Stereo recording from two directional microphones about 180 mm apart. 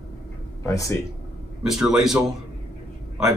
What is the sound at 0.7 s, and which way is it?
Speech, 15° left (ahead or behind).